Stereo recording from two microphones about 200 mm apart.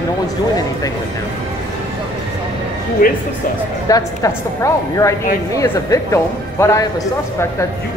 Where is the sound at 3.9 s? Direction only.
15° left (ahead or behind).